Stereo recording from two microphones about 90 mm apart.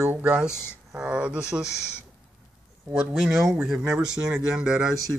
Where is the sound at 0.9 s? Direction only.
10° right (ahead or behind).